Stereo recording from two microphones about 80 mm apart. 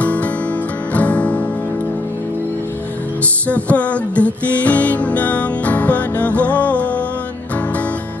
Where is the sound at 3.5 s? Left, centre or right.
Centre.